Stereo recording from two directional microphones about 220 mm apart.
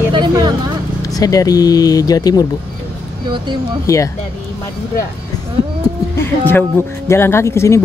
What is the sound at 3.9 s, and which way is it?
Speech, 15° left (ahead or behind).